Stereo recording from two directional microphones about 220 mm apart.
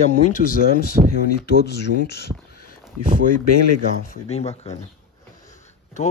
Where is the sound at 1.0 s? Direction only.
25° right (ahead or behind).